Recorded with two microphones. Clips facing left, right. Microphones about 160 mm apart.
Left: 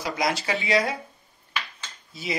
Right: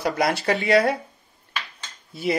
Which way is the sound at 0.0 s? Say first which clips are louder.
Right 4 dB; 55° right (ahead or behind).